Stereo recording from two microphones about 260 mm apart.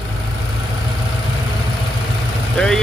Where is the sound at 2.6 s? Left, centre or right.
Centre.